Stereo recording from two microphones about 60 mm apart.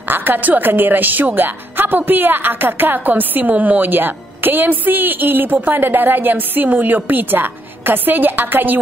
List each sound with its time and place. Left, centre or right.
0.1 s a woman's voice: right